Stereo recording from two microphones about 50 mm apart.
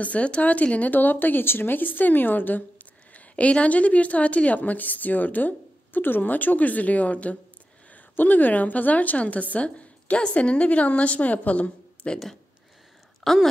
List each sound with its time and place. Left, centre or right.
0.0 s a woman's voice: left
13.2 s speech: centre